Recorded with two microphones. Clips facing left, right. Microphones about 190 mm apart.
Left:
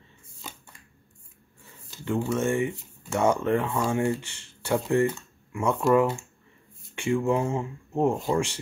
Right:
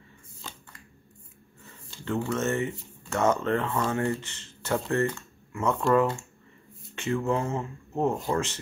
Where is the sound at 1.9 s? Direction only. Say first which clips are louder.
Left 2 dB; 10° left (ahead or behind).